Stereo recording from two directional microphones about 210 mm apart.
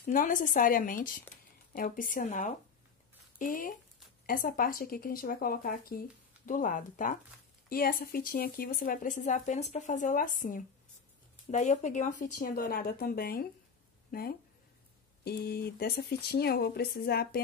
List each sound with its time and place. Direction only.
0.0 s speech: 40° left (ahead or behind)